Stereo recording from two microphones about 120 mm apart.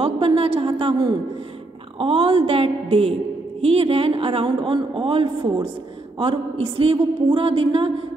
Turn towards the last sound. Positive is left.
turn(degrees=-45)  # may be behind; listen again after turning